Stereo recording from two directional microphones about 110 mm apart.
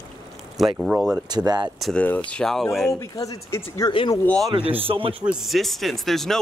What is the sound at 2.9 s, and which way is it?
Speech, 35° left (ahead or behind).